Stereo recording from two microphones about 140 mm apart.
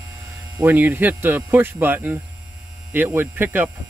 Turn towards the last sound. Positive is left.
turn(degrees=-15)  # may be behind; listen again after turning